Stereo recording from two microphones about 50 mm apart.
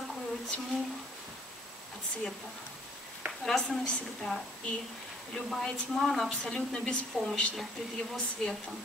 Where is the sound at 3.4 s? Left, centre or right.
Centre.